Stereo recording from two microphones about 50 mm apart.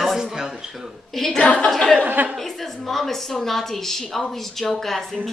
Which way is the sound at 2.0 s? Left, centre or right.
Right.